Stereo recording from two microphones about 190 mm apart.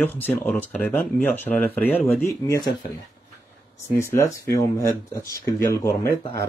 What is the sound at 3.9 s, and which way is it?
Speech, 15° left (ahead or behind).